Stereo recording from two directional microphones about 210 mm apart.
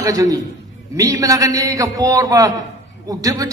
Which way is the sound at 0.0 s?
15° right (ahead or behind).